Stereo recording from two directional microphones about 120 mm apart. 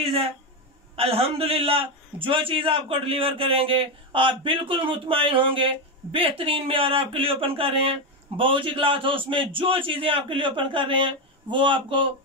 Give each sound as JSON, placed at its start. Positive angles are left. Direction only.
{"t": 0.0, "sound": "a man's voice", "side_deg": -55}